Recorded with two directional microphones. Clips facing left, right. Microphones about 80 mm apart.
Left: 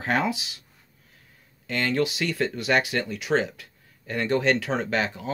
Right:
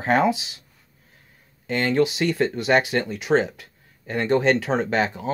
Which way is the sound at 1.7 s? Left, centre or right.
Right.